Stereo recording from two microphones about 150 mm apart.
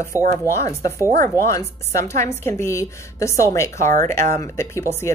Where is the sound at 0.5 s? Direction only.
20° left (ahead or behind).